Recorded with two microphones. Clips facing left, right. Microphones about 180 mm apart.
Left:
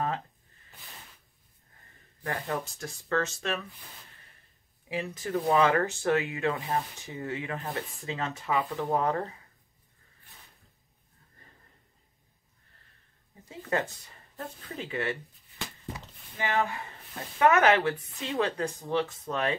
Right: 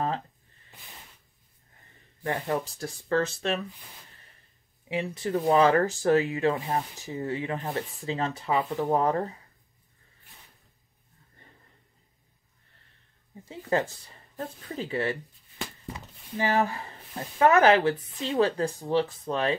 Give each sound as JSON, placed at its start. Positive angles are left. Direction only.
{"t": 2.2, "sound": "speech", "side_deg": -20}
{"t": 2.6, "sound": "speech", "side_deg": -35}
{"t": 4.8, "sound": "speech", "side_deg": -30}
{"t": 5.3, "sound": "speech", "side_deg": -20}
{"t": 5.6, "sound": "speech", "side_deg": -35}
{"t": 13.5, "sound": "speech", "side_deg": -30}
{"t": 16.3, "sound": "speech", "side_deg": -35}